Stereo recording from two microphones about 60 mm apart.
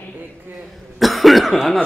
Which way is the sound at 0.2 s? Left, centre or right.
Right.